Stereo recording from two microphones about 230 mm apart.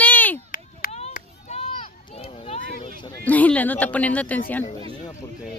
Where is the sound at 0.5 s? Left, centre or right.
Left.